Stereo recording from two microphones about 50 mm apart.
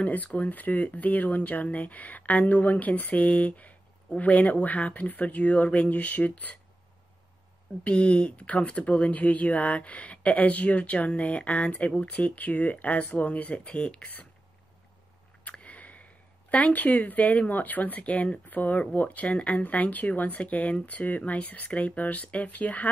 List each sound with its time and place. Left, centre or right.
0.0 s speech: left
7.8 s speech: left
15.5 s speech: left